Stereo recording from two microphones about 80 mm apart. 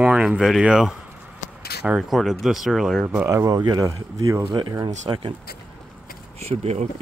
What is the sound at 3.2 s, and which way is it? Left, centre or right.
Speech, right.